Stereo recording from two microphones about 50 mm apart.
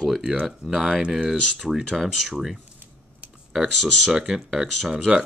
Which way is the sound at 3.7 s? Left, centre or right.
Centre.